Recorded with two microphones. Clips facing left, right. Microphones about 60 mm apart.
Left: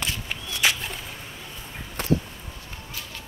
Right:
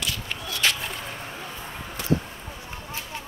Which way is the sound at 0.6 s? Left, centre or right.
Centre.